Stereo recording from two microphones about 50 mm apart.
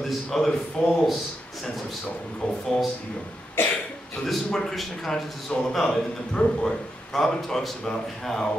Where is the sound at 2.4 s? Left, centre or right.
Centre.